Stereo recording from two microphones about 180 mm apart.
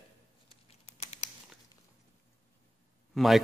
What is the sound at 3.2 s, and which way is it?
Speech, centre (ahead or behind).